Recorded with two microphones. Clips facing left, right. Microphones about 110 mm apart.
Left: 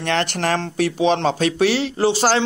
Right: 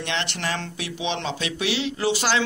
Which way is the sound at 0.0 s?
45° left (ahead or behind).